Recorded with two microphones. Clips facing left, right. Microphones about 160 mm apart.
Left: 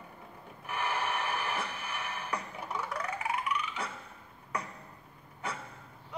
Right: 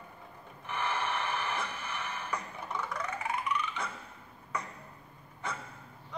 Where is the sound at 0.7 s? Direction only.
10° left (ahead or behind).